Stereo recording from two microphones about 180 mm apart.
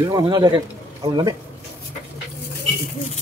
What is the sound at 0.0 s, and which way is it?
Speech, 20° right (ahead or behind).